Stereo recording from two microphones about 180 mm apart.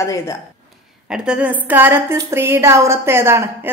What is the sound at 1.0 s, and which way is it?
Speech, 5° right (ahead or behind).